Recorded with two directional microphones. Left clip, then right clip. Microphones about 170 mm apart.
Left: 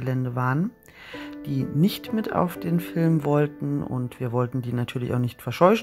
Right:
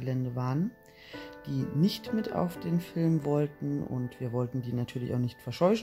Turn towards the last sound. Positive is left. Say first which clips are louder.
# left 8 dB
turn(degrees=20)  # may be behind; listen again after turning